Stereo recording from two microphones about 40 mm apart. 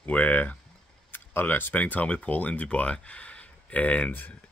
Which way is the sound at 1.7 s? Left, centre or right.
Left.